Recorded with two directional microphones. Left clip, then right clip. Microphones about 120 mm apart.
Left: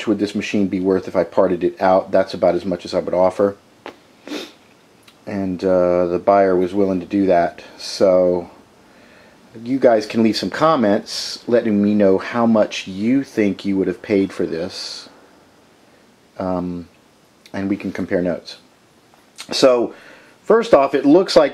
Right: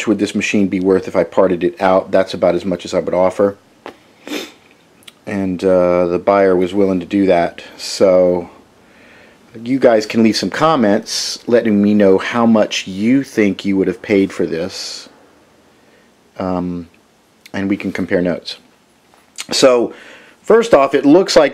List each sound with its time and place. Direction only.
0.0 s speech: 25° right (ahead or behind)
3.8 s sniff: 5° right (ahead or behind)
4.2 s cat: 25° right (ahead or behind)
5.0 s speech: 25° right (ahead or behind)
9.6 s speech: 25° right (ahead or behind)
16.3 s speech: 25° right (ahead or behind)